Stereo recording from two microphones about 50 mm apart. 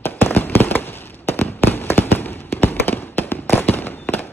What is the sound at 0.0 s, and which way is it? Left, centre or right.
Fireworks, left.